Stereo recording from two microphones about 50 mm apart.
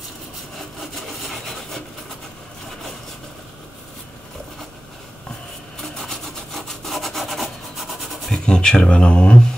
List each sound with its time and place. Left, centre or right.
0.6 s sawing: centre
5.8 s wood: centre
8.5 s speech: centre